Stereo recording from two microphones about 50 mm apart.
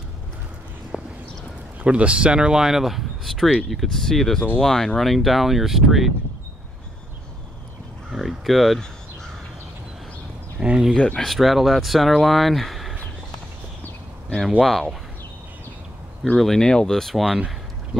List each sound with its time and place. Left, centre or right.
0.9 s horse: centre
1.8 s speech: right; by 6.1 s centre
8.1 s speech: centre
10.6 s a sound: centre
11.1 s speech: centre
14.6 s speech: centre
16.3 s speech: centre